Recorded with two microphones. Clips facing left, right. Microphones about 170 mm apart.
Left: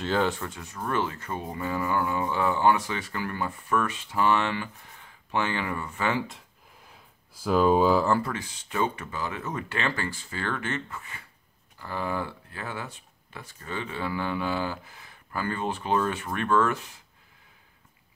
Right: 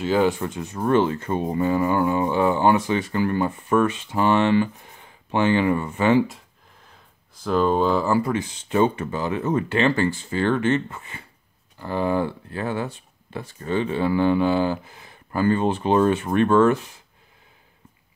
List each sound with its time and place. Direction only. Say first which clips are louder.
0.0 s speech: right 6 dB; 10° right (ahead or behind)
6.9 s speech: even; 5° left (ahead or behind)
8.2 s speech: right 8 dB; 20° right (ahead or behind)